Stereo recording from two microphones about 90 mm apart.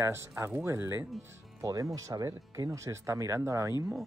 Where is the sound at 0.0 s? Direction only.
30° right (ahead or behind).